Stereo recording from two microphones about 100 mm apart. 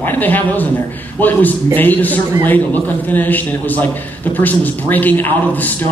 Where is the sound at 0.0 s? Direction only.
20° left (ahead or behind).